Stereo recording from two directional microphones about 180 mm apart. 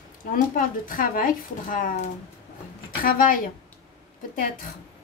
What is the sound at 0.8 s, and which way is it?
A woman's voice, 50° left (ahead or behind).